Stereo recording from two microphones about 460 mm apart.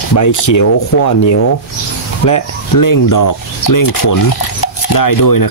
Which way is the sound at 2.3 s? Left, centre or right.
Left.